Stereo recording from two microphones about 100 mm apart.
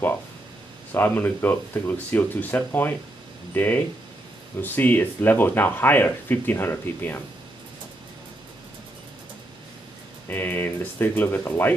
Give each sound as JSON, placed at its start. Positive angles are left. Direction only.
{"t": 0.9, "sound": "speech", "side_deg": 20}
{"t": 10.2, "sound": "speech", "side_deg": 20}